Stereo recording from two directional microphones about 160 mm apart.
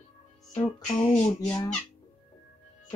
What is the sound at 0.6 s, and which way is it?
Speech, 25° left (ahead or behind).